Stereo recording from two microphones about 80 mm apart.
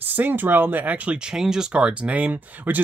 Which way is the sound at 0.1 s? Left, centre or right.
Right.